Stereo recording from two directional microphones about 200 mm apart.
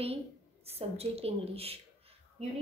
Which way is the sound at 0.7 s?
30° right (ahead or behind).